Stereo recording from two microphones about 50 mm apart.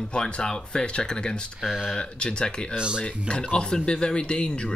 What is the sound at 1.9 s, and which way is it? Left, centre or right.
Speech, centre.